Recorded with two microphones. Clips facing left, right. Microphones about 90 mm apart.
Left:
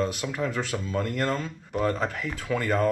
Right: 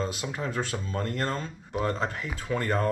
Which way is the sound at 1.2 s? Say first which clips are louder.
Left 3 dB; 25° right (ahead or behind).